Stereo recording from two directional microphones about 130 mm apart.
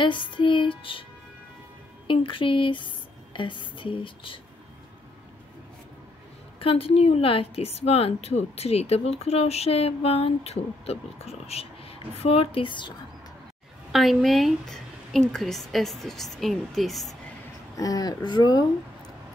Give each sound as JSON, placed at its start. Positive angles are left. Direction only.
{"t": 0.0, "sound": "music", "side_deg": 40}
{"t": 2.0, "sound": "music", "side_deg": 40}
{"t": 6.6, "sound": "a woman's voice", "side_deg": 45}
{"t": 13.9, "sound": "a woman's voice", "side_deg": 0}
{"t": 17.7, "sound": "music", "side_deg": 30}